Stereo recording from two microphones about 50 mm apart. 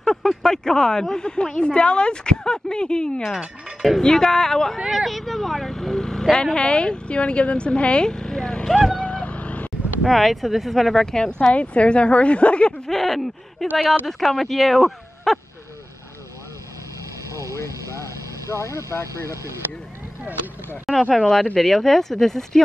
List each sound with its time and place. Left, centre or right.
0.0 s a sound: centre
0.4 s speech: centre
3.3 s speech: centre
4.0 s speech: centre
4.7 s a woman's voice: centre
8.6 s speech: centre
8.9 s boat: left
10.0 s speech: centre; by 12.9 s left
12.9 s speech: centre
18.5 s speech: left
18.9 s speech: left
20.9 s speech: centre